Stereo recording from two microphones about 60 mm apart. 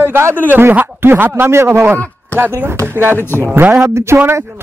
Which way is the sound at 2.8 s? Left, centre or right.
Right.